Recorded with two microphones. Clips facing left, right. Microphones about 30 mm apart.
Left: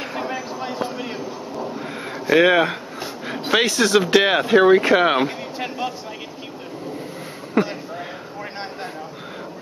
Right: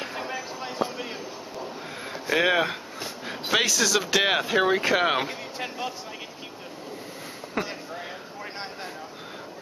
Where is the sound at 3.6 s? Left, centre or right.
Left.